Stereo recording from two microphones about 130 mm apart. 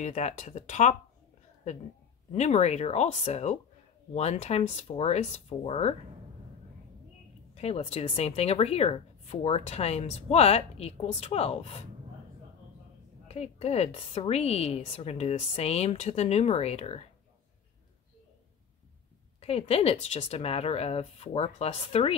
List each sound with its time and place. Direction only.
0.0 s speech: 65° left (ahead or behind)
2.3 s speech: 60° left (ahead or behind)
7.5 s speech: 50° left (ahead or behind)
13.3 s speech: 55° left (ahead or behind)
19.4 s speech: 50° left (ahead or behind)